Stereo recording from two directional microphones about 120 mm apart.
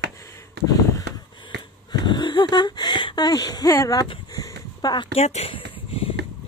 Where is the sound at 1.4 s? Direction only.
40° left (ahead or behind).